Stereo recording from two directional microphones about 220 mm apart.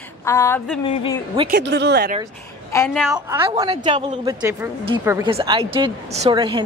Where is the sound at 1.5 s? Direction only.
55° right (ahead or behind).